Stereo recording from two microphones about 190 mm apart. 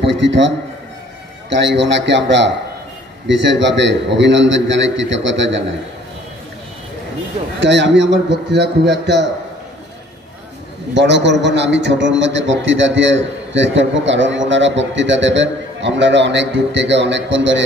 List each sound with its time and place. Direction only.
0.0 s a man's voice: 70° right (ahead or behind)
1.5 s a man's voice: 70° right (ahead or behind)
7.6 s a man's voice: 65° right (ahead or behind)
11.0 s a man's voice: 65° right (ahead or behind)